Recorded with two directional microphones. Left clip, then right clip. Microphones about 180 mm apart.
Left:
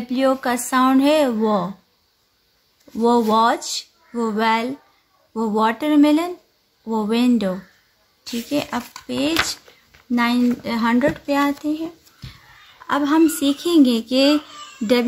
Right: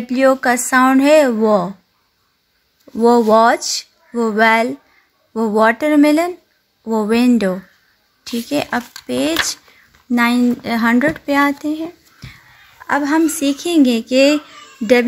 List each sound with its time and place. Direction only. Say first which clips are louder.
0.1 s speech: right 6 dB; 25° right (ahead or behind)
3.0 s a woman's voice: right 5 dB; 25° right (ahead or behind)